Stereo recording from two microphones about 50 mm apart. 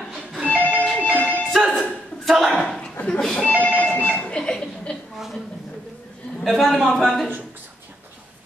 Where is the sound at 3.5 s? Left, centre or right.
Right.